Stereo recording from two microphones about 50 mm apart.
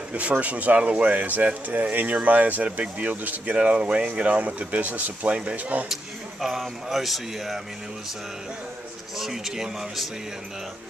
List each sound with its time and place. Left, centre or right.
0.1 s speech: right
6.6 s speech: centre
9.2 s speech: centre